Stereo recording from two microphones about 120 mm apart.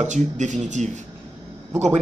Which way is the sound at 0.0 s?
80° right.